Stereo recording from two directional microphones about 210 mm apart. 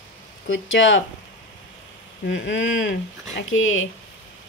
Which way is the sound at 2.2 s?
55° left (ahead or behind).